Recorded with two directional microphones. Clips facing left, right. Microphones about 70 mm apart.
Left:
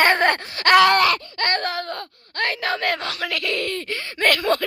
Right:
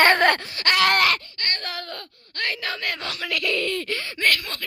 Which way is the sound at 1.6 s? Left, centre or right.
Left.